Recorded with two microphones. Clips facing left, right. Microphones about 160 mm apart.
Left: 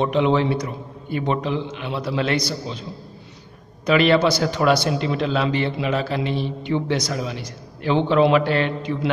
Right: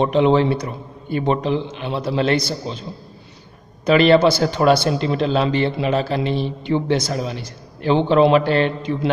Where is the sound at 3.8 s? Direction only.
35° right (ahead or behind).